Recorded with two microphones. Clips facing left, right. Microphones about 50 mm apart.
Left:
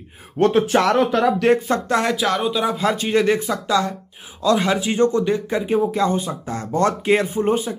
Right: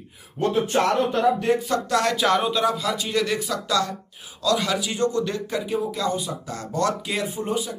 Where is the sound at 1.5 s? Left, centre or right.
Left.